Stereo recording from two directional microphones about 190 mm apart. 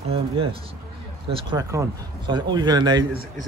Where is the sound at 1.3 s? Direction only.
20° right (ahead or behind).